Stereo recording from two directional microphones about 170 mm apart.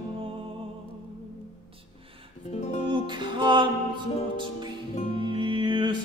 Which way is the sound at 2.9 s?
25° right (ahead or behind).